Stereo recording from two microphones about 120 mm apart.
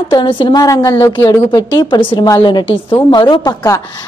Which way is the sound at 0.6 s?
30° left (ahead or behind).